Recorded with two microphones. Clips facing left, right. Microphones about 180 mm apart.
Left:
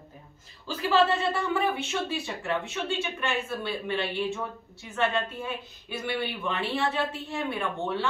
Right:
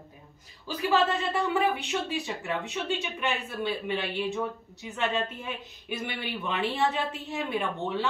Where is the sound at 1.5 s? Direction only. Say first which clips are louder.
Right 1 dB; 15° right (ahead or behind).